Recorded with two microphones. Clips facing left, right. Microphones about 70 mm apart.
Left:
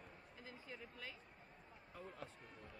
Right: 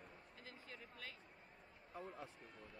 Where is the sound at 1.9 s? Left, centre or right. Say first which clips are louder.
Right 2 dB; centre.